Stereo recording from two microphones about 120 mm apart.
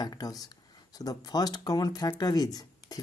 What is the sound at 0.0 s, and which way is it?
Speech, 35° left (ahead or behind).